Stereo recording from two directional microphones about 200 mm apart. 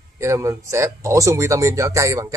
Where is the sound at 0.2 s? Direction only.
15° right (ahead or behind).